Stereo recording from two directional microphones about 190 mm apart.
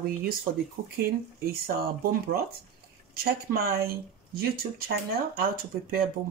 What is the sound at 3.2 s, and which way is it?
Speech, 55° right (ahead or behind).